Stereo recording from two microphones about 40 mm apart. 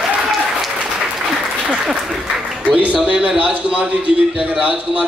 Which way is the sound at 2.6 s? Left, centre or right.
Right.